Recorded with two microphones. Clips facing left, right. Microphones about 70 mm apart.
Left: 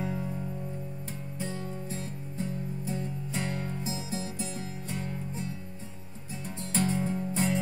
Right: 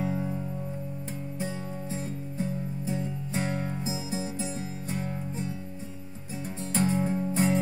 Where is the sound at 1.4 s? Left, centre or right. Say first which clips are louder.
Even; right.